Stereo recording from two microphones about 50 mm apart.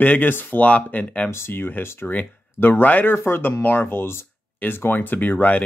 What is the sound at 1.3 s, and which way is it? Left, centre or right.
Speech, left.